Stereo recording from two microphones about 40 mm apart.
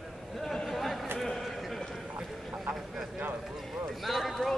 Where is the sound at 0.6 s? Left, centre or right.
Centre.